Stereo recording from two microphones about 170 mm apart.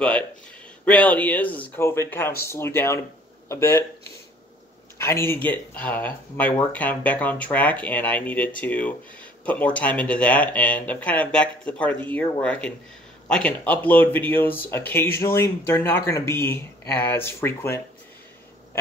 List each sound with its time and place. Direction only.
0.8 s speech: 10° left (ahead or behind)
4.9 s speech: 15° left (ahead or behind)